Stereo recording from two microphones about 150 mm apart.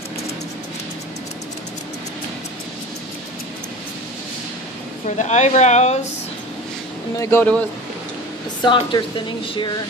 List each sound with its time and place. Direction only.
5.0 s speech: 50° left (ahead or behind)
7.2 s speech: 15° left (ahead or behind)
8.6 s speech: 30° left (ahead or behind)